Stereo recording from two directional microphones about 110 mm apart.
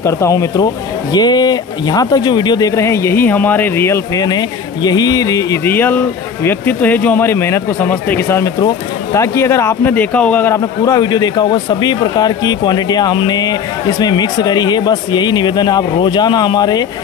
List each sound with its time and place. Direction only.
0.0 s speech: 30° left (ahead or behind)
4.3 s speech: 35° left (ahead or behind)
5.7 s a man's voice: 20° left (ahead or behind)
10.5 s speech: 35° left (ahead or behind)